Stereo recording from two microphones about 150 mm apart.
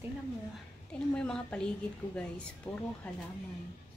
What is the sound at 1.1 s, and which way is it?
Speech, 10° left (ahead or behind).